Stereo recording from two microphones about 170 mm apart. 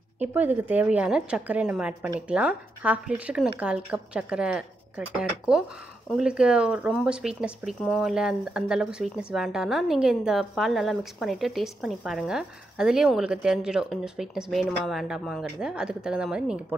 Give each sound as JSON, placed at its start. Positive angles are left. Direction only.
{"t": 0.2, "sound": "a woman's voice", "side_deg": -10}